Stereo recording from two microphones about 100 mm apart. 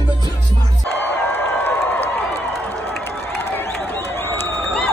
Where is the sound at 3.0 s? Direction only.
20° left (ahead or behind).